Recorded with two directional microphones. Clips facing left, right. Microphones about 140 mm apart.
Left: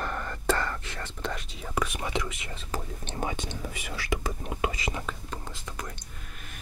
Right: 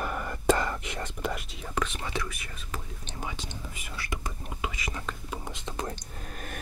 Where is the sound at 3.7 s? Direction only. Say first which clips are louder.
Left 6 dB; 85° left.